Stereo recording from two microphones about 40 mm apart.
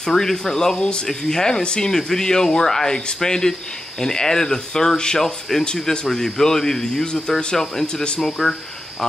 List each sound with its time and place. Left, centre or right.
0.0 s speech: centre